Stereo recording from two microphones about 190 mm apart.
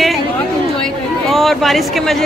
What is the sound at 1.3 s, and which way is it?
Speech, centre (ahead or behind).